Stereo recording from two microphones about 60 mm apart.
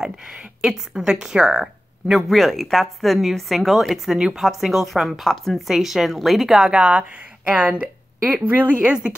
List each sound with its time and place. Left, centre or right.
0.0 s speech: centre
6.7 s speech: right